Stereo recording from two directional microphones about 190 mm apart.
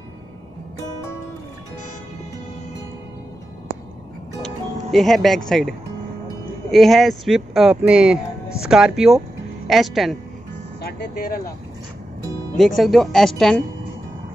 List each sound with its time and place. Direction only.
4.9 s speech: centre (ahead or behind)
10.8 s speech: 55° left (ahead or behind)
12.5 s speech: centre (ahead or behind)